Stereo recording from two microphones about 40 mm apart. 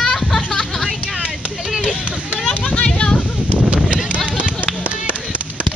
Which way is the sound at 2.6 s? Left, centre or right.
Left.